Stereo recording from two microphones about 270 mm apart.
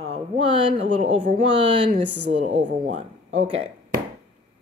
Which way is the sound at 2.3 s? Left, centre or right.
Right.